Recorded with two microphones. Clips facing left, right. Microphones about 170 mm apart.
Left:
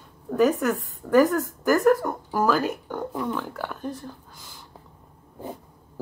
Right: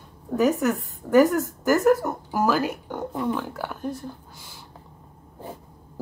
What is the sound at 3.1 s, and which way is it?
Speech, 20° right (ahead or behind).